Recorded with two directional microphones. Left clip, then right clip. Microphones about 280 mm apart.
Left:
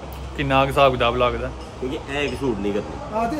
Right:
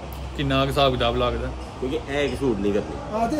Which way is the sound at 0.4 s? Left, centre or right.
Centre.